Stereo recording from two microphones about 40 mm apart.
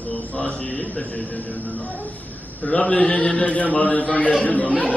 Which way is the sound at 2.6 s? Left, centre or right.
Left.